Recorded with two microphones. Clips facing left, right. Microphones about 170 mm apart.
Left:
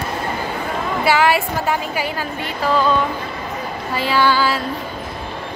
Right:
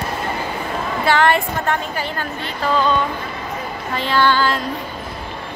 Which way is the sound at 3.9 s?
10° left (ahead or behind).